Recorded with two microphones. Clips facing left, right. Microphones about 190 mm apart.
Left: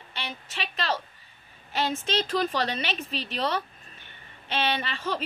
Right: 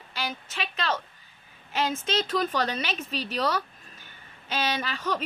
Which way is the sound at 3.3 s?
25° left (ahead or behind).